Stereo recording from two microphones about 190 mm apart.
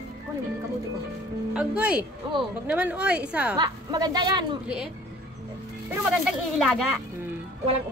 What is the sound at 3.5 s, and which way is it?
A woman's voice, 20° right (ahead or behind).